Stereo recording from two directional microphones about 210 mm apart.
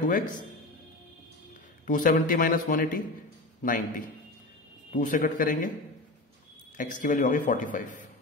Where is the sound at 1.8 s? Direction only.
40° left (ahead or behind).